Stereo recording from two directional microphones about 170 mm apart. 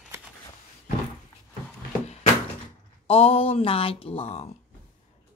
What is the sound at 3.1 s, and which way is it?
Speech, 35° left (ahead or behind).